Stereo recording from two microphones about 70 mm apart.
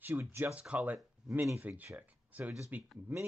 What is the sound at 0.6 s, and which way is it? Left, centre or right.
Speech, centre.